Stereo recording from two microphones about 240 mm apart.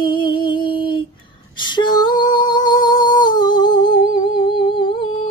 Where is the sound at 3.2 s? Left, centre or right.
Centre.